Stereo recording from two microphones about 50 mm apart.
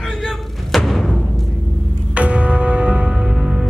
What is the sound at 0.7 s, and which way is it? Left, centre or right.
Music, centre.